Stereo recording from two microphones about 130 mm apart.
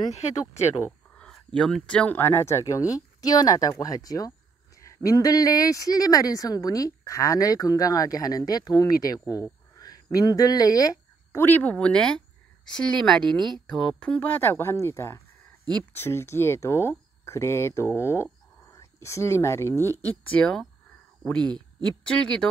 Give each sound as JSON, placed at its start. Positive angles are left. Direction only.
{"t": 1.1, "sound": "speech", "side_deg": 5}
{"t": 9.3, "sound": "a sound", "side_deg": 25}
{"t": 10.1, "sound": "speech", "side_deg": 30}
{"t": 11.4, "sound": "speech", "side_deg": 15}
{"t": 22.0, "sound": "speech", "side_deg": 5}